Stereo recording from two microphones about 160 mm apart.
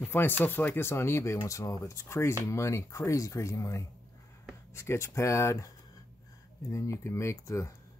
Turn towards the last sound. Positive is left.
turn(degrees=20)  # may be behind; listen again after turning